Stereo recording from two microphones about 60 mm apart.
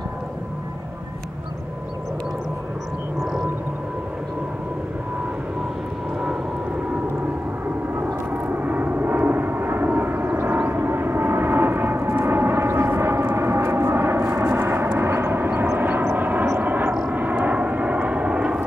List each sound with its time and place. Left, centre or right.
7.6 s vehicle: right
12.2 s gong: right
13.9 s vehicle: right; by 18.6 s centre